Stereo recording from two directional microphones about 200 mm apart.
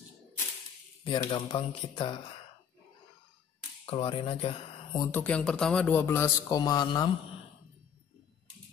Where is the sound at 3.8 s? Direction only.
30° left (ahead or behind).